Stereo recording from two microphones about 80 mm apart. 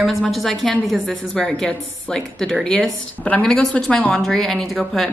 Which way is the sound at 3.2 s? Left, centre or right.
Centre.